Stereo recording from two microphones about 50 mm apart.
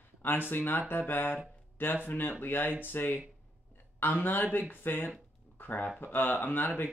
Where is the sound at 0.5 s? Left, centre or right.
Left.